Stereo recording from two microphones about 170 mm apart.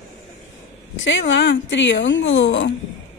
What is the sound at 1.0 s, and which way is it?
Speech, 90° left.